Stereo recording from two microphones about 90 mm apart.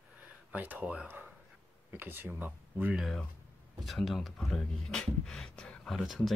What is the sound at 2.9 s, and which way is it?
Speech, 5° right (ahead or behind).